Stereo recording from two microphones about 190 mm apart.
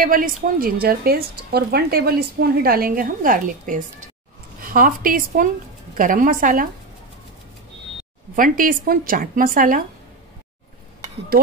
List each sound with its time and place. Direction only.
0.0 s a woman's voice: 45° right (ahead or behind)
8.4 s a woman's voice: 45° right (ahead or behind)